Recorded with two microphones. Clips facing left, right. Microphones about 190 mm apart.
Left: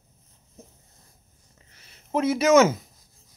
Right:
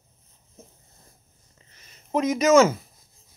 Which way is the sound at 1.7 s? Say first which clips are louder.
Right 1 dB; 10° left (ahead or behind).